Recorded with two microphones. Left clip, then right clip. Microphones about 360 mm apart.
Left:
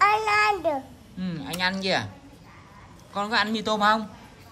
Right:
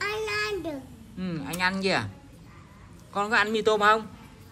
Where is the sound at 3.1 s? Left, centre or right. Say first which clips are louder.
Right 1 dB; centre.